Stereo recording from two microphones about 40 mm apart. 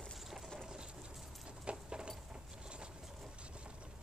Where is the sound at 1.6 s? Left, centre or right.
Right.